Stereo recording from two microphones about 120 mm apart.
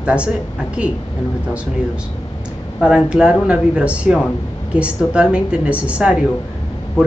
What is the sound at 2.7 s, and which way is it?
Speech, 5° right (ahead or behind).